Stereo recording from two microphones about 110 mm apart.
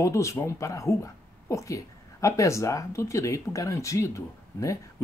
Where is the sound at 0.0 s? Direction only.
25° left (ahead or behind).